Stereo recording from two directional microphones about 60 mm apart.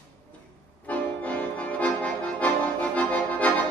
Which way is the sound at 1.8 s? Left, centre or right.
Left.